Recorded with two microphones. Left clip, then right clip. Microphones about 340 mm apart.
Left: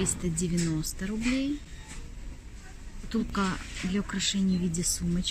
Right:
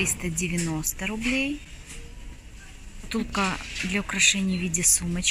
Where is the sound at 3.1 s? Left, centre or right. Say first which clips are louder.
Right 4 dB; centre.